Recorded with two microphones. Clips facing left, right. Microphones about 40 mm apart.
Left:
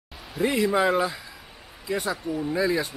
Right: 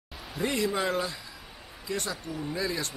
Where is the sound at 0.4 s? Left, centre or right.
Centre.